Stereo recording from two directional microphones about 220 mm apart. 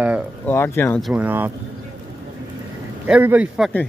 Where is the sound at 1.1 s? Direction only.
10° right (ahead or behind).